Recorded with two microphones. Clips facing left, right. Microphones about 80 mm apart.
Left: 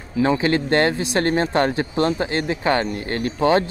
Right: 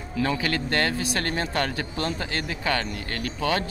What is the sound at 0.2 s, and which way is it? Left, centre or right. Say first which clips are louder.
Speech: left 7 dB; left.